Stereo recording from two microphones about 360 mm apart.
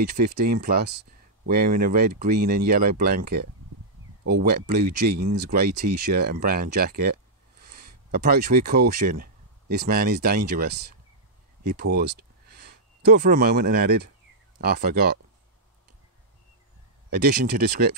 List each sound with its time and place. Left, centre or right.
0.2 s speech: right
17.1 s speech: right